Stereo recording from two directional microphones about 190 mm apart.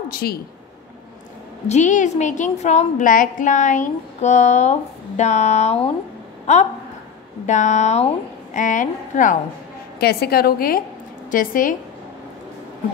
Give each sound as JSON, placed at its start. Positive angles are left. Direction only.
{"t": 0.1, "sound": "a woman's voice", "side_deg": 55}
{"t": 1.7, "sound": "a woman's voice", "side_deg": 40}
{"t": 9.9, "sound": "a woman's voice", "side_deg": 55}